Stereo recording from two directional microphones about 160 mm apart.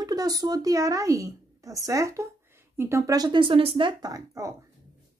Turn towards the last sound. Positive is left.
turn(degrees=-20)  # may be behind; listen again after turning